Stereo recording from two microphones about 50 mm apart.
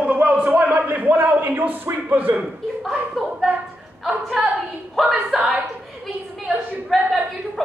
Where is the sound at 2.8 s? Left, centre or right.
Centre.